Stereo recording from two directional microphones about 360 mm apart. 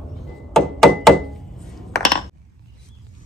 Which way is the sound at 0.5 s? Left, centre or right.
Centre.